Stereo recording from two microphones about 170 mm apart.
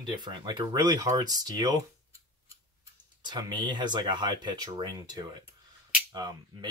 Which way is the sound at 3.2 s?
25° right (ahead or behind).